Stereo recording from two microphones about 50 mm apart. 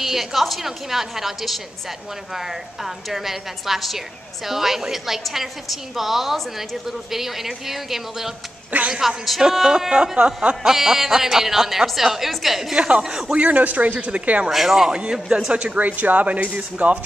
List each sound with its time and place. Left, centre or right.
0.0 s a woman's voice: centre
9.4 s music: centre
12.7 s speech: right
13.0 s music: centre
13.5 s speech: right
14.5 s music: centre
15.4 s speech: right